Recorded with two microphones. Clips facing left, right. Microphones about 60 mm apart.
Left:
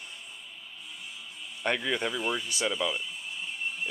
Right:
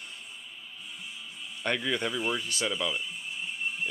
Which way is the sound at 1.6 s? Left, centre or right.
Centre.